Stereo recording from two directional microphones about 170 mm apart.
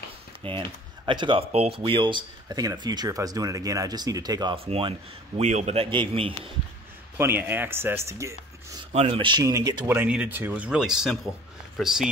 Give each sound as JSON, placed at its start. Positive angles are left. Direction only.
{"t": 0.4, "sound": "a man's voice", "side_deg": -30}
{"t": 7.2, "sound": "speech", "side_deg": -15}
{"t": 8.9, "sound": "speech", "side_deg": -35}